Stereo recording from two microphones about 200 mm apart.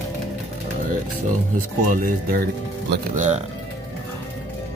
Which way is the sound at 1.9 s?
45° right (ahead or behind).